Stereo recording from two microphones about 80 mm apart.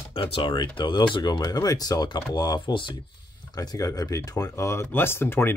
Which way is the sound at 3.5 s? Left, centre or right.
Left.